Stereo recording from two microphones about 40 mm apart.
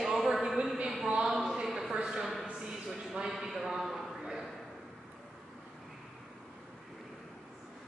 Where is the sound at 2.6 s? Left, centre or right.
Centre.